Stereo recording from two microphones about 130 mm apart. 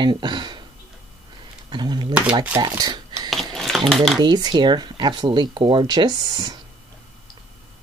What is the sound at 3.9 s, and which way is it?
Speech, centre (ahead or behind).